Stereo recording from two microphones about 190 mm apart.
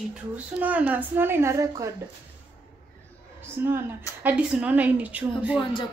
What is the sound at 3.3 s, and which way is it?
A woman's voice, 10° right (ahead or behind).